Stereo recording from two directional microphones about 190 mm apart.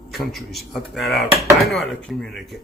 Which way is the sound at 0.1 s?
Centre (ahead or behind).